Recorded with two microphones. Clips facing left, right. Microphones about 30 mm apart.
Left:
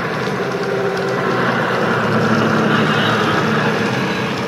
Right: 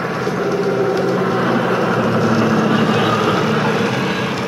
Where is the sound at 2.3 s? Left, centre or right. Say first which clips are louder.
Even; centre.